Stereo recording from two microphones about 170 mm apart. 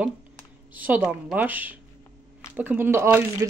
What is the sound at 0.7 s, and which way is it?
Speech, 10° right (ahead or behind).